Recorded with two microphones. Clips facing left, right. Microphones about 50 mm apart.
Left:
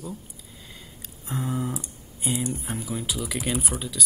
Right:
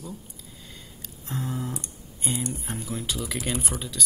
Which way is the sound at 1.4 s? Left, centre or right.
Centre.